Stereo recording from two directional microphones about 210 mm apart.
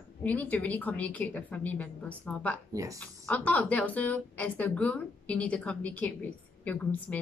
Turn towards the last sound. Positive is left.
turn(degrees=5)  # may be behind; listen again after turning